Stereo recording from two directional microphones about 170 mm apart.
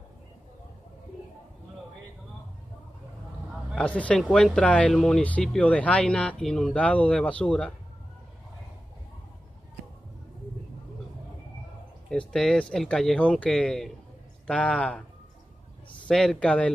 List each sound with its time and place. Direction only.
3.7 s speech: 5° left (ahead or behind)
12.1 s speech: 5° left (ahead or behind)
16.1 s speech: 5° left (ahead or behind)